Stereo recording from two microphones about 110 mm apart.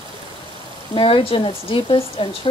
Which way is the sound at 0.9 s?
55° left (ahead or behind).